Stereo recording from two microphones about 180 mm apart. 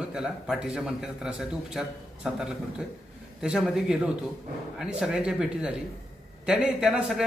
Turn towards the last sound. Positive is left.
turn(degrees=-5)  # may be behind; listen again after turning